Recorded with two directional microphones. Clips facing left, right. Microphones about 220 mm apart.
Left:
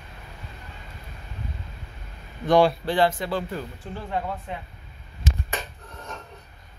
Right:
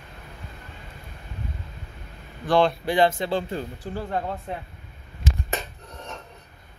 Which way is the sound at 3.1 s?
25° right (ahead or behind).